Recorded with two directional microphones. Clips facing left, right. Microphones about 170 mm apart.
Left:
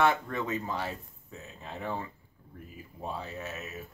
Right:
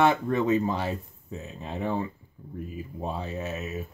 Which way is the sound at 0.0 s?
20° right (ahead or behind).